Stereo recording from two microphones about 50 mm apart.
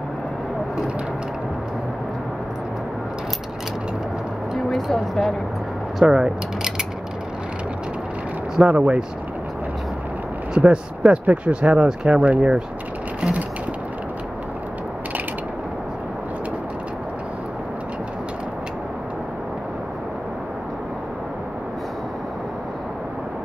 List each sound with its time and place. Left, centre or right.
4.6 s speech: centre
6.0 s speech: centre
8.6 s speech: right
10.5 s speech: right